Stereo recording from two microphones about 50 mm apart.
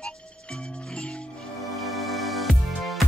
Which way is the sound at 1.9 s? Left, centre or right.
Centre.